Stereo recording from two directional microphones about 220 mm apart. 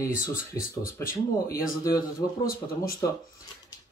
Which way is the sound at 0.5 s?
10° left (ahead or behind).